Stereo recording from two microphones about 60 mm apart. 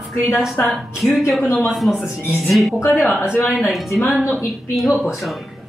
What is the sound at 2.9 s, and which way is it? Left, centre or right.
Speech, left.